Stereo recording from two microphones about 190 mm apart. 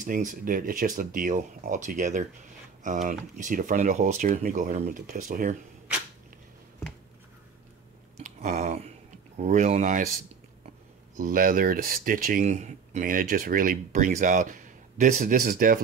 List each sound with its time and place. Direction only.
0.0 s speech: 45° right (ahead or behind)
8.2 s a sound: 40° right (ahead or behind)
9.4 s speech: 35° right (ahead or behind)
11.1 s speech: 45° right (ahead or behind)